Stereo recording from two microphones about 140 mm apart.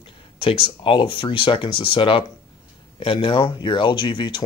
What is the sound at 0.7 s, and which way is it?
Speech, 35° left (ahead or behind).